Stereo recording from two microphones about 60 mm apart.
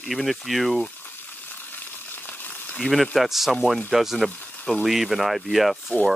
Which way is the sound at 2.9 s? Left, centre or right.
Centre.